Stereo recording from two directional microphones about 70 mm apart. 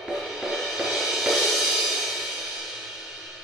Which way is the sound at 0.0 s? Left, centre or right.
Centre.